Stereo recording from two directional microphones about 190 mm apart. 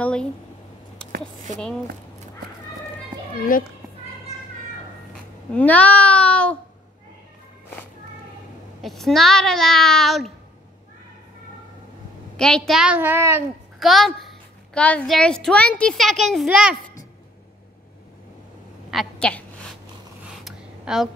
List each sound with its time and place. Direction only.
0.0 s a woman's voice: 5° left (ahead or behind)
3.5 s a child's voice: 45° left (ahead or behind)
5.5 s a child's voice: 10° left (ahead or behind)
8.8 s a woman's voice: centre (ahead or behind)
12.4 s a woman's voice: 5° left (ahead or behind); by 13.4 s 15° right (ahead or behind)
13.7 s a child's voice: centre (ahead or behind)
18.9 s a woman's voice: centre (ahead or behind)
20.4 s a sound: centre (ahead or behind)